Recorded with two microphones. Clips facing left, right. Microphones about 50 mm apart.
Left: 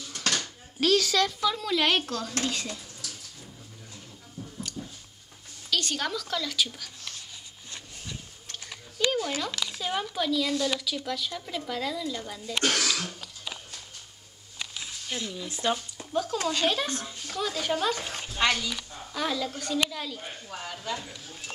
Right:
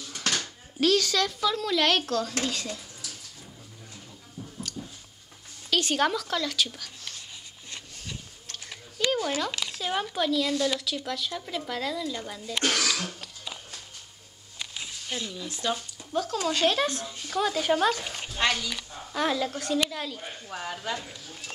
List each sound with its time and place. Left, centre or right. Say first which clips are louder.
0.0 s speech: even; centre
2.2 s speech: even; centre
5.7 s speech: right 5 dB; centre
9.0 s a sound: even; centre
9.4 s speech: right 1 dB; centre
15.1 s speech: even; centre
15.4 s speech: left 3 dB; left
16.1 s speech: even; centre
17.1 s speech: right 4 dB; centre
18.3 s speech: left 1 dB; centre
18.9 s speech: right 6 dB; centre
20.4 s speech: right 3 dB; centre
21.0 s speech: even; centre